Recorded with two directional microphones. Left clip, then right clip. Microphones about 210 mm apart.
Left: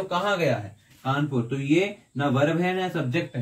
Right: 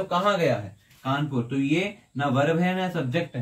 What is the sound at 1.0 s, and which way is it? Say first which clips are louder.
Speech: left 1 dB; 15° right (ahead or behind).